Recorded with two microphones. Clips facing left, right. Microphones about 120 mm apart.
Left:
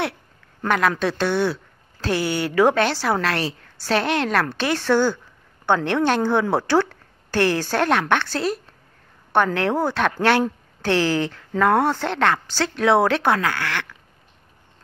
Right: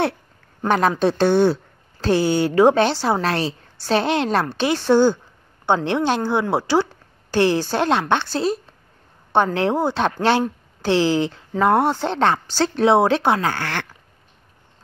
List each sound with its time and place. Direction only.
0.7 s speech: 30° right (ahead or behind)